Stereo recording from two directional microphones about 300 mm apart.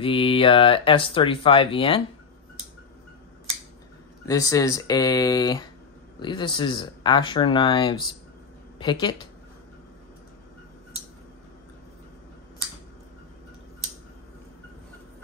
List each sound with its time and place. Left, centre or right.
0.0 s speech: centre
4.3 s speech: centre